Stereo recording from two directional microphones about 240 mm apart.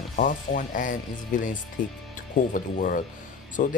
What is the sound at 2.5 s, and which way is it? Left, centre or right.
Speech, left.